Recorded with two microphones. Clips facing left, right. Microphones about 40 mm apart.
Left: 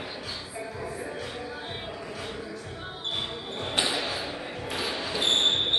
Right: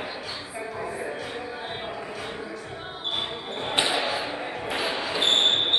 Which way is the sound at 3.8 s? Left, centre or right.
Right.